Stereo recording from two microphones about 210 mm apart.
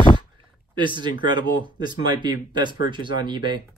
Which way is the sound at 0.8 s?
20° right (ahead or behind).